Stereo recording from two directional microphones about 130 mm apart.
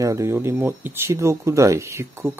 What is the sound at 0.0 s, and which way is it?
Speech, 25° right (ahead or behind).